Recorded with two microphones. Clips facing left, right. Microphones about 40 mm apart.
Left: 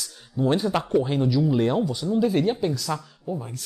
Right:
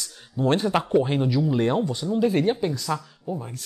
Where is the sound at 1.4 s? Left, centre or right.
Centre.